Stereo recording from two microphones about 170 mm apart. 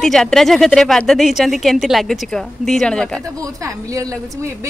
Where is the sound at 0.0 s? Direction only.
5° left (ahead or behind).